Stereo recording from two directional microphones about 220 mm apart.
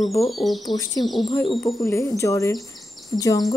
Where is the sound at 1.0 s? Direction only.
25° left (ahead or behind).